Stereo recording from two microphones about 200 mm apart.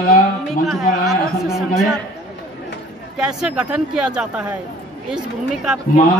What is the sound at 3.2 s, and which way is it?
Speech, 5° right (ahead or behind).